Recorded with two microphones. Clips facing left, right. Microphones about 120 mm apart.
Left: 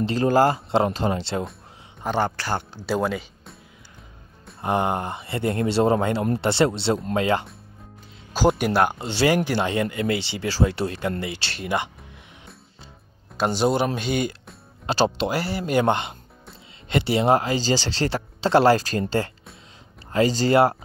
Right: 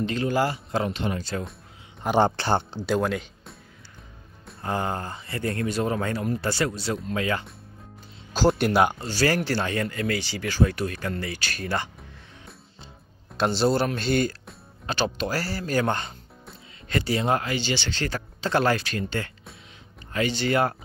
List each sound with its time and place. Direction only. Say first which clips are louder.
0.0 s speech: left 6 dB; 35° left (ahead or behind)
2.1 s speech: right 4 dB; 25° right (ahead or behind)
2.9 s speech: left 1 dB; 5° left (ahead or behind)
4.6 s speech: left 5 dB; 20° left (ahead or behind)
8.5 s speech: left 1 dB; 10° left (ahead or behind)
8.9 s speech: left 3 dB; 20° left (ahead or behind)
13.4 s speech: left 1 dB; 15° left (ahead or behind)
14.9 s speech: left 5 dB; 30° left (ahead or behind)